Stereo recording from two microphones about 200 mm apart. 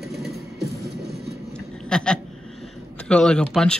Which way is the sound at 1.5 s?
5° left (ahead or behind).